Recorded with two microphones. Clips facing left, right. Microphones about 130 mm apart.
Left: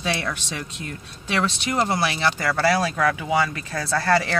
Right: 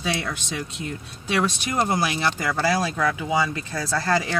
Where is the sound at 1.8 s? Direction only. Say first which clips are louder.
Even; 15° right (ahead or behind).